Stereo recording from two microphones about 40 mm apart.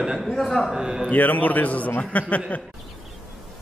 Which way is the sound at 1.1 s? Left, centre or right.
Left.